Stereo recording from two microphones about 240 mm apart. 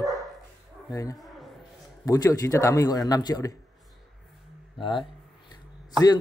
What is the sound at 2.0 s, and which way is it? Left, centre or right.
A man's voice, centre.